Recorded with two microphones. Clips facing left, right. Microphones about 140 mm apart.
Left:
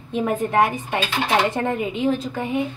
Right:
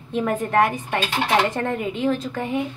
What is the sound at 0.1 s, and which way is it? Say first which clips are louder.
A woman's voice: even; 10° left (ahead or behind).